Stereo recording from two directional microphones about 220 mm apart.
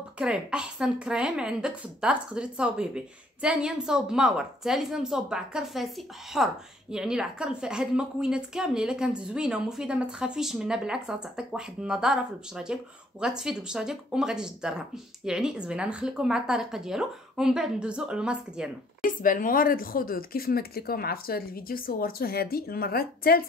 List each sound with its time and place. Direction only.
0.2 s a woman's voice: 5° right (ahead or behind)
19.0 s a woman's voice: 40° left (ahead or behind)